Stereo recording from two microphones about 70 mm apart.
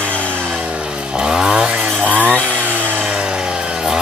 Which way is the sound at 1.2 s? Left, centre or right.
Centre.